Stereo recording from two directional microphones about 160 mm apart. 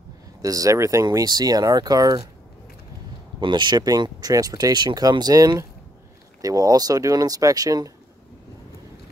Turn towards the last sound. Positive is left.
turn(degrees=-25)  # may be behind; listen again after turning